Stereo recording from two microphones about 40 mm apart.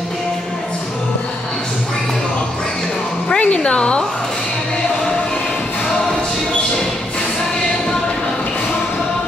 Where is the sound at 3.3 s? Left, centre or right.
Left.